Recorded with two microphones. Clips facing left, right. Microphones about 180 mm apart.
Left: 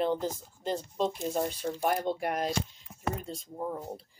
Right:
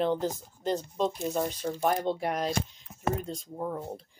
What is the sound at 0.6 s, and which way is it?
Speech, 5° left (ahead or behind).